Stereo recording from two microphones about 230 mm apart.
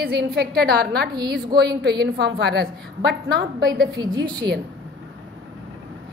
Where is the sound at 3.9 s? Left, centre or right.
Centre.